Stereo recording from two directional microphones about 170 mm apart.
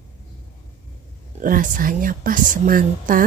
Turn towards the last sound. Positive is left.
turn(degrees=-55)  # may be behind; listen again after turning